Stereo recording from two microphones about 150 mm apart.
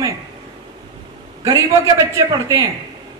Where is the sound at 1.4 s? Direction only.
20° right (ahead or behind).